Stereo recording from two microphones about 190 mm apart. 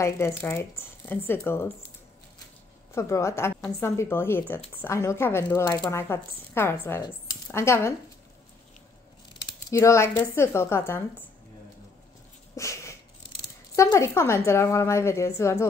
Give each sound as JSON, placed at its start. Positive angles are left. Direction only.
{"t": 0.0, "sound": "speech", "side_deg": 15}
{"t": 2.9, "sound": "speech", "side_deg": 15}
{"t": 9.4, "sound": "speech", "side_deg": 15}
{"t": 12.5, "sound": "a sound", "side_deg": 15}
{"t": 13.7, "sound": "speech", "side_deg": 15}